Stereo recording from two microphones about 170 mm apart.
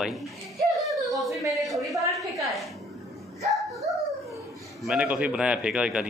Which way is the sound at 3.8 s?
20° right (ahead or behind).